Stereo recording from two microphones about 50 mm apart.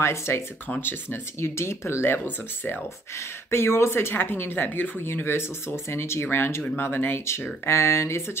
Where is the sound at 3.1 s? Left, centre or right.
Left.